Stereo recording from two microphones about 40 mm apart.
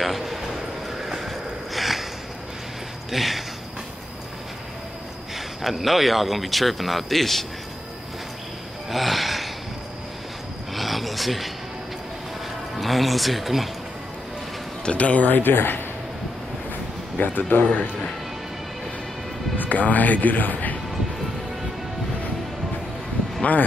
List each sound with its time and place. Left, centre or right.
0.0 s a man's voice: centre
1.0 s a sound: centre
3.1 s a sound: centre
5.3 s speech: centre
8.9 s gasp: centre
10.7 s a sound: centre
12.7 s speech: centre
14.9 s speech: left
15.2 s speech: left
17.2 s speech: left
19.6 s speech: left